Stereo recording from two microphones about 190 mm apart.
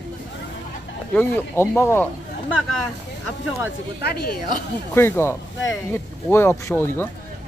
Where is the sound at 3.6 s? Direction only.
55° left (ahead or behind).